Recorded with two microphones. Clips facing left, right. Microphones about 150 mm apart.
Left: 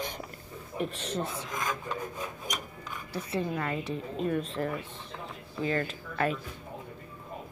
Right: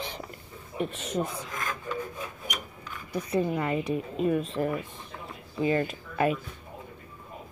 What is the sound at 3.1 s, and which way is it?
Speech, 15° right (ahead or behind).